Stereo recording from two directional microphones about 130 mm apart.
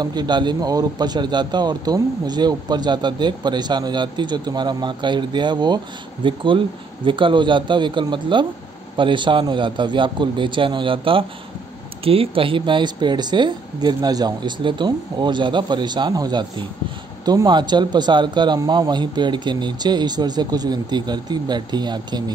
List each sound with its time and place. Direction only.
0.0 s a man's voice: 35° right (ahead or behind)